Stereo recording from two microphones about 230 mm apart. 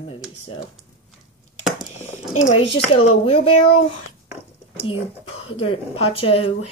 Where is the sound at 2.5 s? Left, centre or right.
Left.